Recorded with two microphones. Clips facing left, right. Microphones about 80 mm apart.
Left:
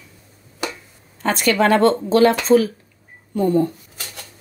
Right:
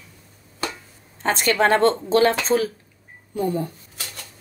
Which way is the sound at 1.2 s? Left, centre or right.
Right.